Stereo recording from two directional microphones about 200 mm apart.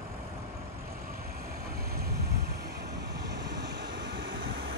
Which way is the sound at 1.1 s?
50° right (ahead or behind).